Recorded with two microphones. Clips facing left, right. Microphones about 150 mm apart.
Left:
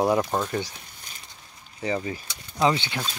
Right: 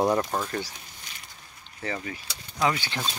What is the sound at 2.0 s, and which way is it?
Speech, 25° left (ahead or behind).